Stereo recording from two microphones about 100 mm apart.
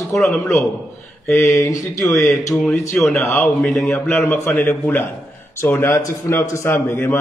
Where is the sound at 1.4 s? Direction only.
30° left (ahead or behind).